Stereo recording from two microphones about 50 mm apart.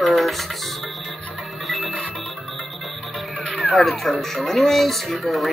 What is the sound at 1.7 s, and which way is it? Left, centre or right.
Music, centre.